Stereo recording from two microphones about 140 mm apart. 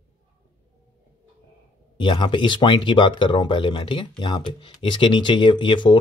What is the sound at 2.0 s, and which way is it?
Speech, 35° left (ahead or behind).